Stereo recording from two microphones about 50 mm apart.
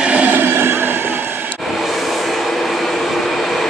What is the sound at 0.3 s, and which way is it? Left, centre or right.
Train, right.